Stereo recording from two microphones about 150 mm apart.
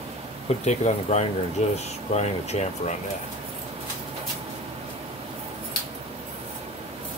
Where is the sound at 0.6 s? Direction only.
50° left (ahead or behind).